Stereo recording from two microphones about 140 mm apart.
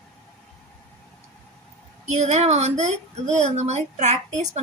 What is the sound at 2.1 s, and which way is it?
A woman's voice, 50° right (ahead or behind).